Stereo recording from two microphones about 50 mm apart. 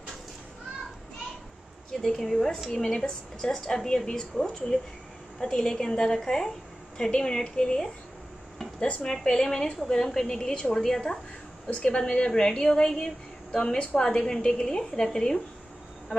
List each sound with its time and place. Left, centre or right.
1.9 s a woman's voice: centre
8.7 s speech: left
9.0 s a woman's voice: centre